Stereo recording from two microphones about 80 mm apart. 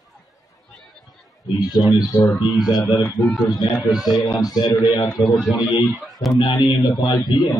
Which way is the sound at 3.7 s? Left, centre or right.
Centre.